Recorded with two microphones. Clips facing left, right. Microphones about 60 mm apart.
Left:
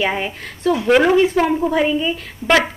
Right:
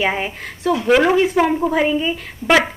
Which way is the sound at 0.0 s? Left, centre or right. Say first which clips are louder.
Even; centre.